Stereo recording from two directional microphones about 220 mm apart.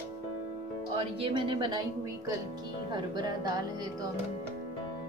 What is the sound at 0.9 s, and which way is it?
Speech, 25° right (ahead or behind).